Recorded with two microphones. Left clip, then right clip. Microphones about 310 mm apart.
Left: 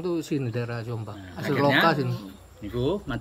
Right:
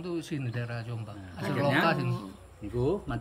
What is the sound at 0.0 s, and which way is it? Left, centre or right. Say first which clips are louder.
Speech: left 7 dB; left.